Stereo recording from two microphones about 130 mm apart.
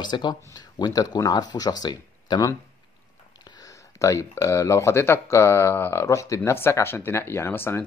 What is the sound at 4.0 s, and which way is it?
Speech, 25° left (ahead or behind).